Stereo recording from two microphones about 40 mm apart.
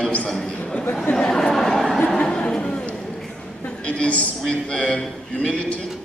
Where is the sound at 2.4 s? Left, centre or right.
Centre; by 4.3 s left.